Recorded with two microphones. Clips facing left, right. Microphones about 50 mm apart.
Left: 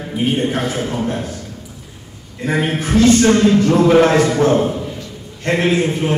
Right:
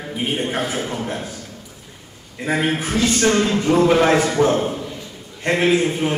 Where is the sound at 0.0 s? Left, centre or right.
Centre.